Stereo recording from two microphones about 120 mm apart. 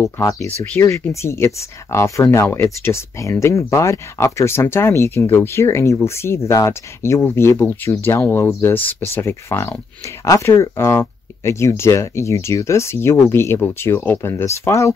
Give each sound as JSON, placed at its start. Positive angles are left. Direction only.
{"t": 0.0, "sound": "speech", "side_deg": 25}